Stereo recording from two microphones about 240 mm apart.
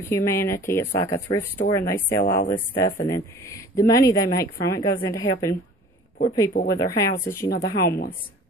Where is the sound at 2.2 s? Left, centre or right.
Left.